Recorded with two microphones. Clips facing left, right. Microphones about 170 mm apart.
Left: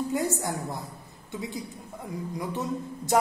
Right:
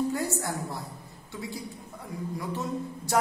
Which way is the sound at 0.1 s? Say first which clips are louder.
Left 2 dB; 20° left (ahead or behind).